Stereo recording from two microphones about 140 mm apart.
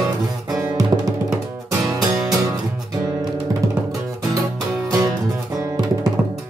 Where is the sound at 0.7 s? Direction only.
25° right (ahead or behind).